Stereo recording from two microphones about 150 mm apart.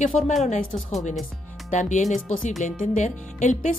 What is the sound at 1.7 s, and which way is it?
A woman's voice, 55° left (ahead or behind).